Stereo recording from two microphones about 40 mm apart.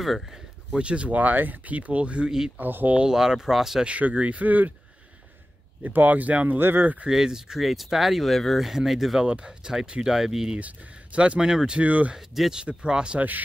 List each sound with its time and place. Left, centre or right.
0.7 s speech: right
1.0 s speech: right
2.5 s speech: right
3.1 s speech: centre
3.8 s speech: right
5.9 s speech: right
6.6 s speech: right
7.1 s speech: centre
8.6 s speech: centre
9.2 s speech: right; by 10.5 s centre
10.6 s speech: right
11.4 s speech: centre
11.8 s speech: right
12.5 s speech: right